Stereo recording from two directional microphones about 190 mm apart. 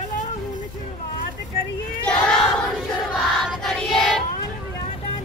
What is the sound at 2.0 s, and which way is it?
Crowd, 5° left (ahead or behind).